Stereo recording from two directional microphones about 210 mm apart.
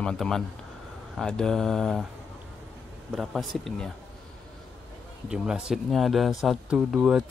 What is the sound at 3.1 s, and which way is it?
Speech, centre (ahead or behind).